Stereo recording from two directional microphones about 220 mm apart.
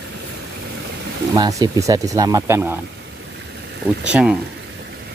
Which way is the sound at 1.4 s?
15° right (ahead or behind).